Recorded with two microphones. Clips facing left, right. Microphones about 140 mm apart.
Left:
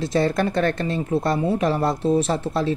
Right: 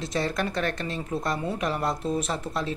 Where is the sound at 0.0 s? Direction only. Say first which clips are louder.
Left 7 dB; 35° left (ahead or behind).